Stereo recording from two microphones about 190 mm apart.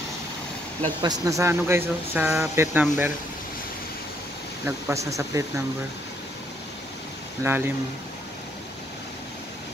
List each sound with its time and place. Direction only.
1.0 s speech: 15° right (ahead or behind)
4.6 s speech: 15° right (ahead or behind)
7.4 s speech: 10° right (ahead or behind)